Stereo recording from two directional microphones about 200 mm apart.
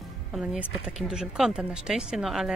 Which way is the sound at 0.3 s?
5° right (ahead or behind).